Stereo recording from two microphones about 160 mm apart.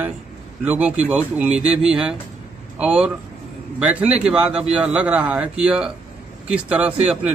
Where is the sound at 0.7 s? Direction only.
10° right (ahead or behind).